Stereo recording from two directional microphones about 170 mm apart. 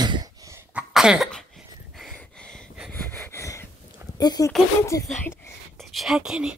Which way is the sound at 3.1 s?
10° left (ahead or behind).